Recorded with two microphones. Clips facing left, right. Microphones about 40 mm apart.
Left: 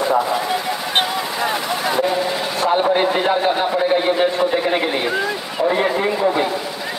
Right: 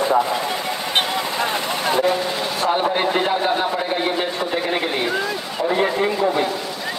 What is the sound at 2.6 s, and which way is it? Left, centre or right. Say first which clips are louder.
A man's voice: left 4 dB; centre.